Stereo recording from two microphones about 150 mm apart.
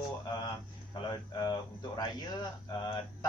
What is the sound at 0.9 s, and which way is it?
Speech, 30° left (ahead or behind).